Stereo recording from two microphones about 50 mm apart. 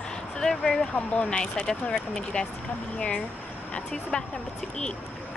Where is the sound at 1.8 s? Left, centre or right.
Centre.